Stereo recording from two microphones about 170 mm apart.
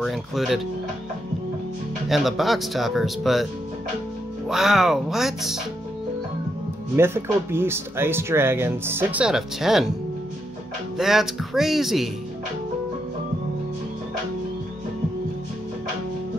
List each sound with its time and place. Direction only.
0.0 s speech: centre (ahead or behind)
2.0 s speech: centre (ahead or behind)
4.5 s speech: centre (ahead or behind)
7.0 s speech: 15° right (ahead or behind)
11.0 s speech: centre (ahead or behind)